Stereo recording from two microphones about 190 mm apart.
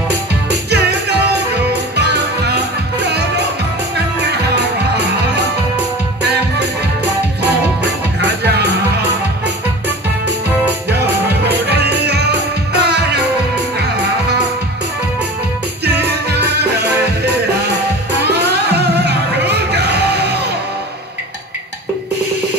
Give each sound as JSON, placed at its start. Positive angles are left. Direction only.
{"t": 0.5, "sound": "music", "side_deg": -60}
{"t": 4.9, "sound": "music", "side_deg": -60}
{"t": 7.4, "sound": "music", "side_deg": -60}
{"t": 10.9, "sound": "music", "side_deg": -60}
{"t": 15.8, "sound": "music", "side_deg": -60}